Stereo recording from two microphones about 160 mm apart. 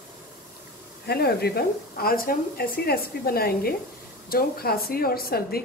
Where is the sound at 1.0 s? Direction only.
80° left.